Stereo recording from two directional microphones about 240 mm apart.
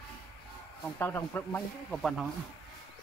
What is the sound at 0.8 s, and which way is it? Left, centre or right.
Speech, centre.